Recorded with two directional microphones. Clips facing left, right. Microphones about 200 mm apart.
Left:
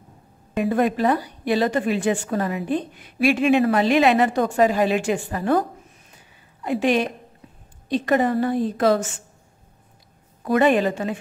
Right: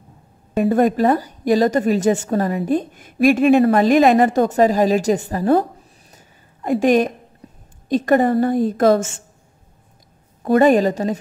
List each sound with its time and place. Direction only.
0.6 s a woman's voice: 40° right (ahead or behind)
6.1 s a sound: 45° right (ahead or behind)
7.9 s a woman's voice: 45° right (ahead or behind)
10.4 s a woman's voice: 40° right (ahead or behind)